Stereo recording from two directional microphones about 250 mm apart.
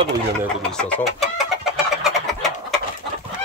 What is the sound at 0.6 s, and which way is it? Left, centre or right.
Speech, centre.